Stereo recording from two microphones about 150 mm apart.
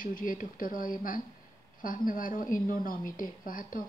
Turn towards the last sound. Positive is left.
turn(degrees=65)  # may be behind; listen again after turning